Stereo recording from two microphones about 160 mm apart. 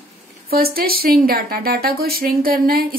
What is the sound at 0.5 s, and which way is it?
A woman's voice, 70° right (ahead or behind).